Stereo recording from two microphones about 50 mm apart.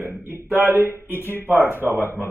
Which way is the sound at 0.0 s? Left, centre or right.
Right.